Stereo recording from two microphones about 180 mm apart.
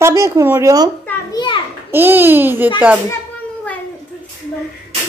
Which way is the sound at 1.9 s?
10° right (ahead or behind).